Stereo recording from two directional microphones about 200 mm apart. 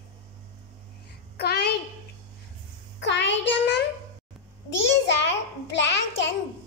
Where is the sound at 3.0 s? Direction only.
60° left (ahead or behind).